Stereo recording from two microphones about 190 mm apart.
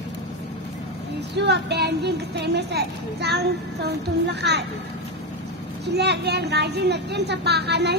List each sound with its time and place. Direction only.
1.3 s a woman's voice: 65° right (ahead or behind)
5.9 s a woman's voice: 60° right (ahead or behind)